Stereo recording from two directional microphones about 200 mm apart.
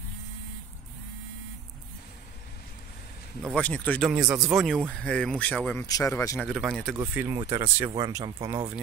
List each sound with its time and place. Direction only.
3.5 s speech: 5° left (ahead or behind)
6.5 s speech: centre (ahead or behind)
7.0 s speech: 10° right (ahead or behind)